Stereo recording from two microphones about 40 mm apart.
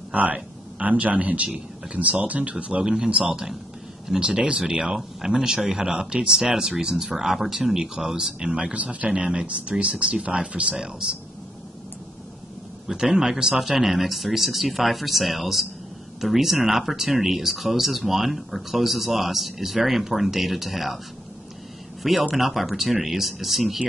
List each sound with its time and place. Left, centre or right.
0.1 s a man's voice: right
2.8 s speech: centre
8.7 s a man's voice: right
9.1 s speech: right
12.9 s speech: centre
22.3 s speech: centre